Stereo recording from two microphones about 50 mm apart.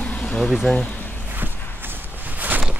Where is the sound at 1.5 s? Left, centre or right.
Left.